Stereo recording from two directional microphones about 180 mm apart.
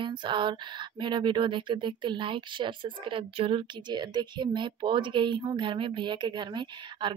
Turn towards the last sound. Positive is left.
turn(degrees=-25)  # may be behind; listen again after turning